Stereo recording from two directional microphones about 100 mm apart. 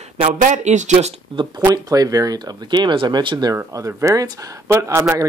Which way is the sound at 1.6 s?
35° right (ahead or behind).